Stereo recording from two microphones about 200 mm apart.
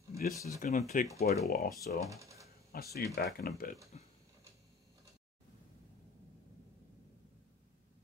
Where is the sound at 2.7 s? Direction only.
50° left (ahead or behind).